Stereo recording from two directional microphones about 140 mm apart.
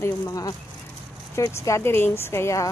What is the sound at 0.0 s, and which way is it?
Speech, 25° left (ahead or behind).